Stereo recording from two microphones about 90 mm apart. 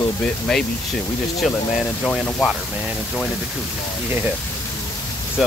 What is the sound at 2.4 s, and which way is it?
Speech, 10° right (ahead or behind).